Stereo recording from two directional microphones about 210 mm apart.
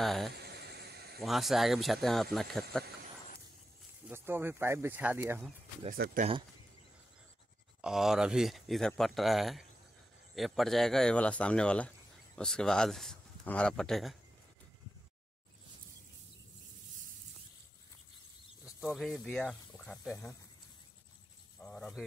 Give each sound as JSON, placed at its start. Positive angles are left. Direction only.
{"t": 0.0, "sound": "speech", "side_deg": 0}
{"t": 0.4, "sound": "a sound", "side_deg": -50}
{"t": 1.2, "sound": "speech", "side_deg": 0}
{"t": 4.1, "sound": "speech", "side_deg": -10}
{"t": 5.9, "sound": "speech", "side_deg": -45}
{"t": 7.8, "sound": "speech", "side_deg": 0}
{"t": 18.8, "sound": "speech", "side_deg": 0}
{"t": 21.5, "sound": "cricket", "side_deg": 5}